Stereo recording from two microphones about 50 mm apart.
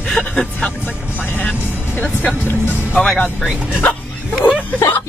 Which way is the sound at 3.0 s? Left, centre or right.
Left.